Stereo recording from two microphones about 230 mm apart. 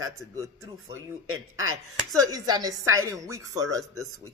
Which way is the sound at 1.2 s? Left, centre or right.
Right.